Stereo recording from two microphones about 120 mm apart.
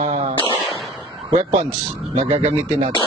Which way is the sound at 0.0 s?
65° right (ahead or behind).